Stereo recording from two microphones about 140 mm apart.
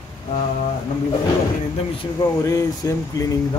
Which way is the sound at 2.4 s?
25° left (ahead or behind).